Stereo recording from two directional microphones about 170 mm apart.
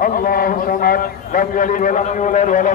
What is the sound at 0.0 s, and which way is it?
A man's voice, 60° left (ahead or behind).